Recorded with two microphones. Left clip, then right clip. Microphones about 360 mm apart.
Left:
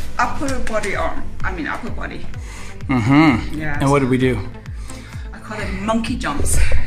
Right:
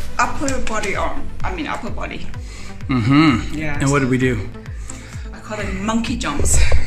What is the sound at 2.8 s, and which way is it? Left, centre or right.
Speech, centre.